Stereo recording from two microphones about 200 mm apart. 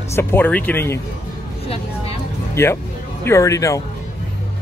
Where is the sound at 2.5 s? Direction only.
15° left (ahead or behind).